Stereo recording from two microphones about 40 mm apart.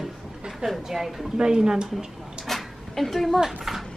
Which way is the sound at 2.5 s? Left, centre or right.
Centre.